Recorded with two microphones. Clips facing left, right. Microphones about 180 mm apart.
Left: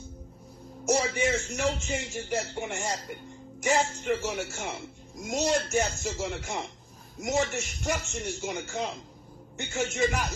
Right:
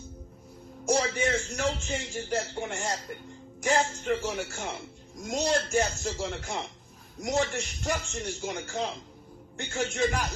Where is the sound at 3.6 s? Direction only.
5° left (ahead or behind).